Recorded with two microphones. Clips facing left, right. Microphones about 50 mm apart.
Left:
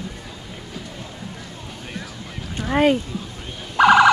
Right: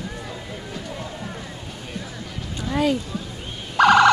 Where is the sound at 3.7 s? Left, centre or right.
Centre.